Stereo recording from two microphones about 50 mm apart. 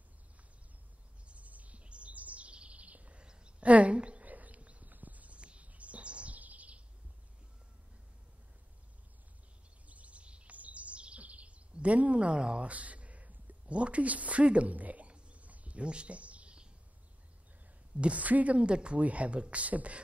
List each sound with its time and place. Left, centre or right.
1.2 s chirp: right
9.8 s bird vocalization: right
17.9 s speech: right